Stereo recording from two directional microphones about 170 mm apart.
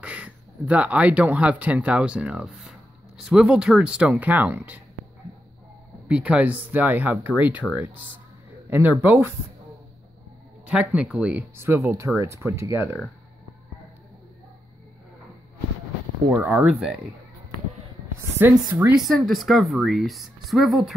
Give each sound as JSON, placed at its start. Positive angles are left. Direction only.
{"t": 0.0, "sound": "speech", "side_deg": -5}
{"t": 6.0, "sound": "speech", "side_deg": -5}
{"t": 10.7, "sound": "speech", "side_deg": -5}
{"t": 16.3, "sound": "speech", "side_deg": -5}
{"t": 18.4, "sound": "speech", "side_deg": -10}